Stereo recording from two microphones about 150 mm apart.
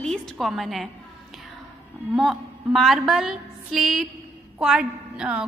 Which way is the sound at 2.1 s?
Centre (ahead or behind).